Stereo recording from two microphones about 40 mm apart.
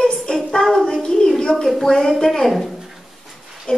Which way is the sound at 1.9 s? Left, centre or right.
Centre.